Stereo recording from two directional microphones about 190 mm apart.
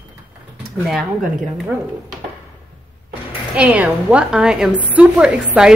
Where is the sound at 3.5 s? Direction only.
5° right (ahead or behind).